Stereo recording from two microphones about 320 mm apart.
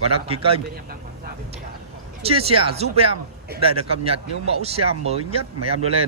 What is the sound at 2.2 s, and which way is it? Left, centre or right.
A man's voice, centre.